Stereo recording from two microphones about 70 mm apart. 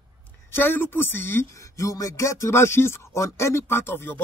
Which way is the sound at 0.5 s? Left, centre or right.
Left.